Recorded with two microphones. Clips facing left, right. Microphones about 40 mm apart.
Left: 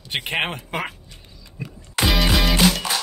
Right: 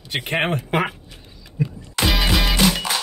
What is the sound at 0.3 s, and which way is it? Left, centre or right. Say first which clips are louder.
Speech: right 3 dB; centre.